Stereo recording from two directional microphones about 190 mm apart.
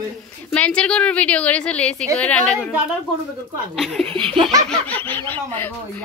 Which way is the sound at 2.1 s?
5° left (ahead or behind).